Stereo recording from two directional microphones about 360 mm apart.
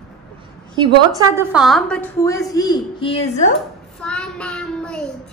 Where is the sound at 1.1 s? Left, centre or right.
Centre.